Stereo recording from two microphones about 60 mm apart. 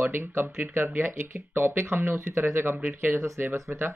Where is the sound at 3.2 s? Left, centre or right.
Right.